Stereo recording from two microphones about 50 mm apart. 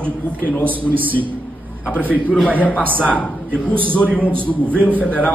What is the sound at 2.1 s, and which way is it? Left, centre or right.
Speech, left.